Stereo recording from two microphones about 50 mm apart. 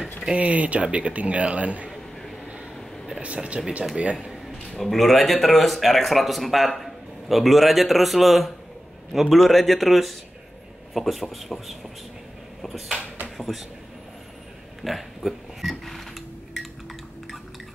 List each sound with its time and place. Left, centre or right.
0.4 s speech: right
3.2 s speech: right
4.7 s speech: centre
12.6 s a sound: centre
13.4 s speech: centre
14.8 s a sound: centre